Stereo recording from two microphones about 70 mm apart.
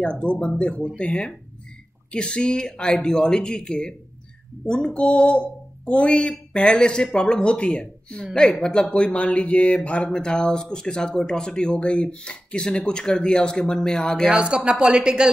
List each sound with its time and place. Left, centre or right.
0.0 s speech: centre
14.3 s speech: centre